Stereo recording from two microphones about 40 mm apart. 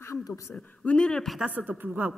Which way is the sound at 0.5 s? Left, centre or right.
Left.